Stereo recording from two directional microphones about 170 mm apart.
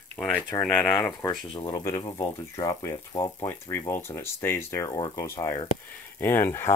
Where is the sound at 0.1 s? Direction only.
5° left (ahead or behind).